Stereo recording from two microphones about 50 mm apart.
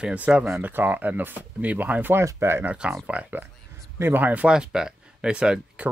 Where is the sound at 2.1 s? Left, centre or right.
Right.